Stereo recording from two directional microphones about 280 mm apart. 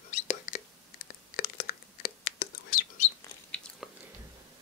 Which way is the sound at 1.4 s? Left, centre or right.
Left.